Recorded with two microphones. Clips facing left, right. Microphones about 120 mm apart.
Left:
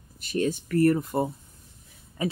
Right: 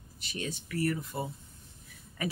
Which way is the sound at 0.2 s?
45° left (ahead or behind).